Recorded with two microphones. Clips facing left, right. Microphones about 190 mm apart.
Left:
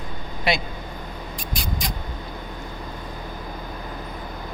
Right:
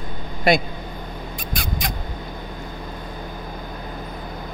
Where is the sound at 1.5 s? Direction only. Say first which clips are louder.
Right 2 dB; 55° right (ahead or behind).